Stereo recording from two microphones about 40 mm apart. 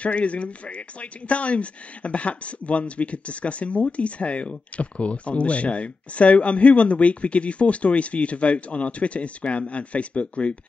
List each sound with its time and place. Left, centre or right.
0.0 s speech: left